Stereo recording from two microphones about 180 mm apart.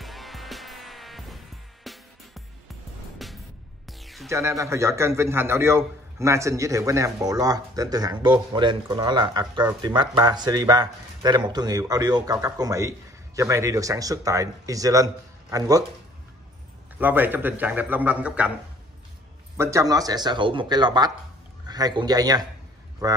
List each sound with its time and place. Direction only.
0.0 s music: centre (ahead or behind)
3.2 s music: centre (ahead or behind)
4.3 s a man's voice: 15° right (ahead or behind)
17.0 s a man's voice: 10° right (ahead or behind)
19.5 s a man's voice: 15° right (ahead or behind)